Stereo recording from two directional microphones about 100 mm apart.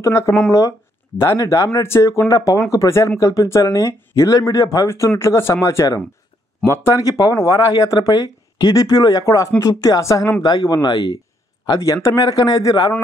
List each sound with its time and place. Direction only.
0.5 s speech: 35° left (ahead or behind)